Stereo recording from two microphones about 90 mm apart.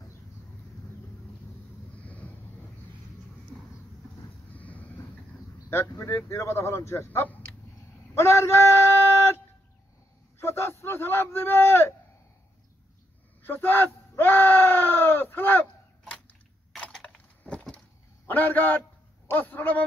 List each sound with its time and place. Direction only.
2.0 s vehicle: 15° left (ahead or behind)
4.5 s train: 15° left (ahead or behind)
5.7 s speech: 25° left (ahead or behind)
8.1 s a sound: 30° left (ahead or behind)
10.4 s speech: 30° left (ahead or behind)
13.4 s screaming: 25° left (ahead or behind); by 17.2 s 5° left (ahead or behind)
17.4 s a sound: 15° left (ahead or behind)
18.2 s a man's voice: 20° left (ahead or behind)
19.2 s a sound: 20° left (ahead or behind)